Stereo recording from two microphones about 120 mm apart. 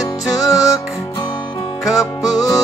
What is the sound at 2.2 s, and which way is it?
Music, 30° left (ahead or behind).